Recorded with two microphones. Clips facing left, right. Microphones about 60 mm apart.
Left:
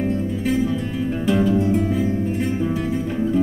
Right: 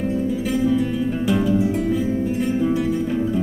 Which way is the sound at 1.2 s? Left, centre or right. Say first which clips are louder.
Left 2 dB; centre.